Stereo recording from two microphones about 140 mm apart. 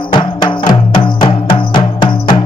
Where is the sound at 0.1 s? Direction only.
35° left (ahead or behind).